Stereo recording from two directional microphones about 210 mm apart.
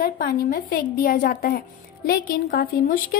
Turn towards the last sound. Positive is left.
turn(degrees=45)  # may be behind; listen again after turning